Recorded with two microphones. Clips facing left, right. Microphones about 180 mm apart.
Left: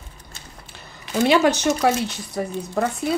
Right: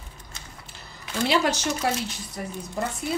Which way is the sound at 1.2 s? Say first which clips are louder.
Left 6 dB; 60° left (ahead or behind).